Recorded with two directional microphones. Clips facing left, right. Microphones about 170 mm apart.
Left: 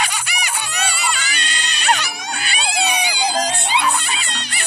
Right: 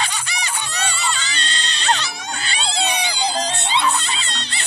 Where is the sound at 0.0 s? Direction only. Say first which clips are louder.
Left 2 dB; 10° left (ahead or behind).